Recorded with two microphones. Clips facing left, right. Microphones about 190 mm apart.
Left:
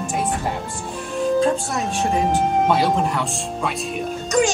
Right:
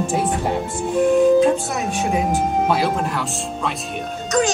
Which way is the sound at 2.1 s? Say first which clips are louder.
Left 1 dB; 5° right (ahead or behind).